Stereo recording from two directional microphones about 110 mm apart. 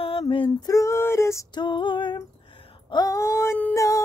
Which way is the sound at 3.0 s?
30° left (ahead or behind).